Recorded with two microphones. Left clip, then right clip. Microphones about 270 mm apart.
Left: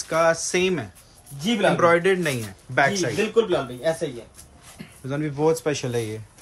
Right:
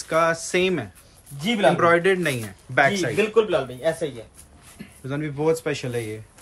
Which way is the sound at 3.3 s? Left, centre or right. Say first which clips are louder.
Right 1 dB; centre.